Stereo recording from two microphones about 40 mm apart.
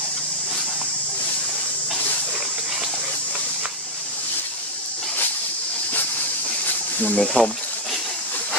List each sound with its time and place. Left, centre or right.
7.2 s speech: centre